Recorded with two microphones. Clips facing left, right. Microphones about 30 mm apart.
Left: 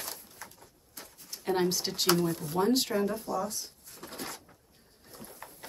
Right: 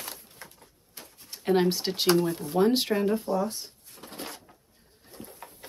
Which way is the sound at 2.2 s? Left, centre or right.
Centre.